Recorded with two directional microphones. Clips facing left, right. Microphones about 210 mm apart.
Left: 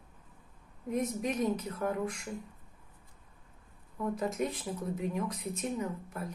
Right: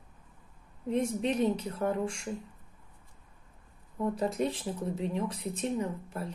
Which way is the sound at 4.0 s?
30° right (ahead or behind).